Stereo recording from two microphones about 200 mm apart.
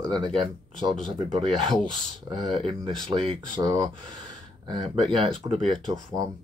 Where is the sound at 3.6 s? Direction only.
15° right (ahead or behind).